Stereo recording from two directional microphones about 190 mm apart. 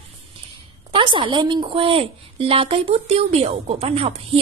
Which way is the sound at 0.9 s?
25° right (ahead or behind).